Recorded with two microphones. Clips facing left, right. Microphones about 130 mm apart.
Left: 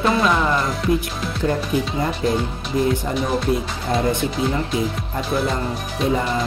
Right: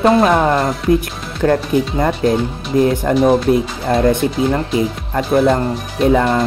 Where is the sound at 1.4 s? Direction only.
65° right (ahead or behind).